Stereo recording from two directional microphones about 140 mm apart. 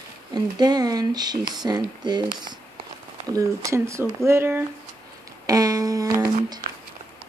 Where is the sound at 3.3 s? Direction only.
20° right (ahead or behind).